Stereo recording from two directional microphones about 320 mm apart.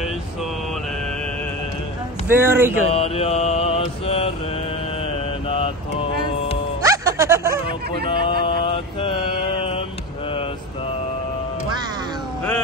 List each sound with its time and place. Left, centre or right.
2.2 s speech: centre
2.9 s mantra: centre
6.8 s music: centre
8.1 s mantra: centre